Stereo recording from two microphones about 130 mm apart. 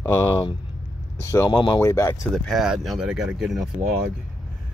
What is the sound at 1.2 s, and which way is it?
Speech, 25° left (ahead or behind).